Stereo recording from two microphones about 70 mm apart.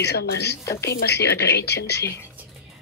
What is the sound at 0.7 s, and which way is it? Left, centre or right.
Speech, left.